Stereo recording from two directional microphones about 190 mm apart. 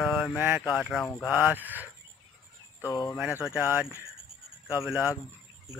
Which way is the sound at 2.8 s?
20° left (ahead or behind).